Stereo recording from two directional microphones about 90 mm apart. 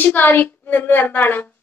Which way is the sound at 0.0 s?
20° left (ahead or behind).